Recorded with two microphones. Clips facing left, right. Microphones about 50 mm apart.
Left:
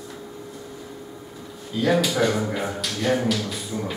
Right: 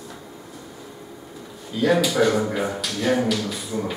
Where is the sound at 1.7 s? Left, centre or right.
Centre.